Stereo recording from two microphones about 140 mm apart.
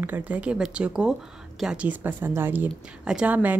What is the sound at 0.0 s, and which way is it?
A woman's voice, 10° right (ahead or behind).